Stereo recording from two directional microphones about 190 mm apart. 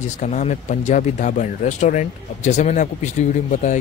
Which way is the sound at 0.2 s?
40° left (ahead or behind).